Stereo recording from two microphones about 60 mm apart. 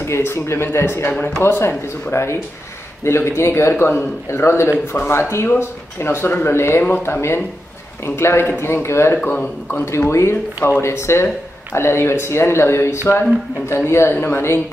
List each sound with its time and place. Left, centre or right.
0.0 s a man's voice: left
9.2 s a man's voice: left
9.8 s a man's voice: left